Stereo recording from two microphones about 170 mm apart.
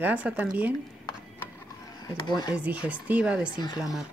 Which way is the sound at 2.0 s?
25° left (ahead or behind).